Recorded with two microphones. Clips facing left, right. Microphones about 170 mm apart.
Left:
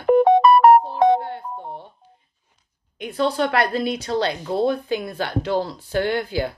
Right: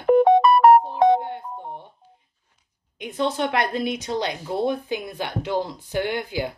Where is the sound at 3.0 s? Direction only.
20° right (ahead or behind).